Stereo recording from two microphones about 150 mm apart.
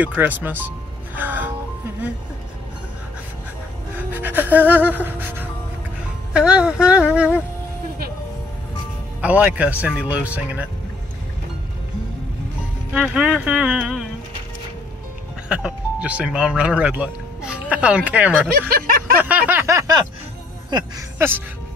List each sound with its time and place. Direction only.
0.0 s speech: 10° right (ahead or behind)
1.1 s music: 10° right (ahead or behind)
3.9 s gasp: 10° right (ahead or behind)
6.3 s speech: 5° right (ahead or behind)
9.2 s speech: 10° right (ahead or behind)
12.9 s speech: 10° right (ahead or behind)
15.4 s speech: 5° right (ahead or behind)
18.5 s a sound: 75° right (ahead or behind)
19.1 s a sound: 10° right (ahead or behind)
20.7 s speech: 30° right (ahead or behind)